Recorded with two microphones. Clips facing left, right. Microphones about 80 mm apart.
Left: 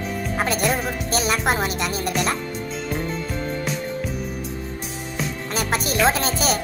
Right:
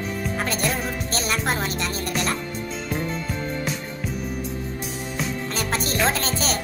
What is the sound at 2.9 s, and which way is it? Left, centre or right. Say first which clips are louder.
Music: even; centre.